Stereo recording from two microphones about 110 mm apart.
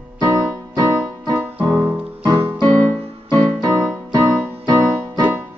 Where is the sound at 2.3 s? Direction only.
45° right (ahead or behind).